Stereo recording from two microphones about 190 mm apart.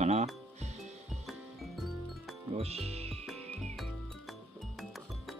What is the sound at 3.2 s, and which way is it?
Music, 5° left (ahead or behind).